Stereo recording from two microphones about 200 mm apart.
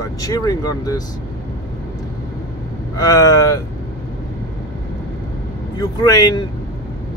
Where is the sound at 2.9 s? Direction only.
20° left (ahead or behind).